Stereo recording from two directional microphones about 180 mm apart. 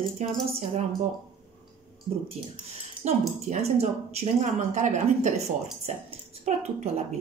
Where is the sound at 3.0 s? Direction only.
40° right (ahead or behind).